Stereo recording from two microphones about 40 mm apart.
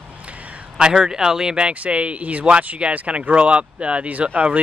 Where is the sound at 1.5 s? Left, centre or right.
Right.